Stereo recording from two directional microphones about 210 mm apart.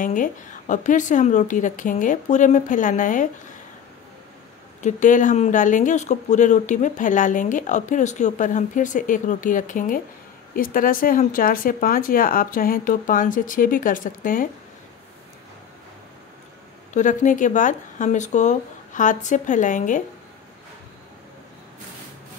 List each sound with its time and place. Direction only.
0.0 s speech: 40° left (ahead or behind)
4.8 s speech: 35° left (ahead or behind)
16.9 s speech: 35° left (ahead or behind)